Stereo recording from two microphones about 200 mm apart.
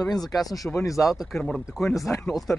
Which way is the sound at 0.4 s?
20° left (ahead or behind).